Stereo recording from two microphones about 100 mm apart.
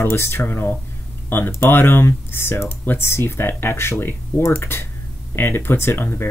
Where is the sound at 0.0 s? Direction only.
25° left (ahead or behind).